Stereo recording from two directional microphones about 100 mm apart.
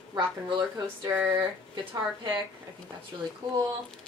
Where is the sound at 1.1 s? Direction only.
20° right (ahead or behind).